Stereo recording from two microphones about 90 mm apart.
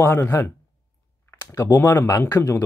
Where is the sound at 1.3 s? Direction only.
35° left (ahead or behind).